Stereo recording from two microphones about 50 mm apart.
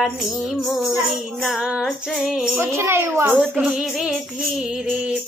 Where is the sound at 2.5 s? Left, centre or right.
Right.